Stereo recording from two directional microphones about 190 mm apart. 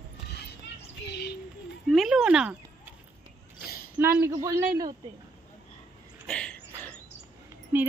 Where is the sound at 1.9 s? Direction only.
Centre (ahead or behind).